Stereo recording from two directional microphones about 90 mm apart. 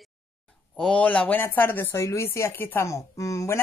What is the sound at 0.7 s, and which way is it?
Speech, 5° left (ahead or behind).